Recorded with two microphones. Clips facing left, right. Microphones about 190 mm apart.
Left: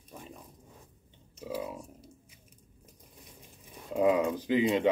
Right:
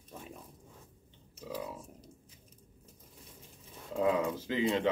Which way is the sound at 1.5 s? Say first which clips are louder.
Left 4 dB; 15° left (ahead or behind).